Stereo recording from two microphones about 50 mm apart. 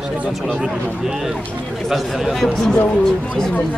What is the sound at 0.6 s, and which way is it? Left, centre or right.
Speech, right.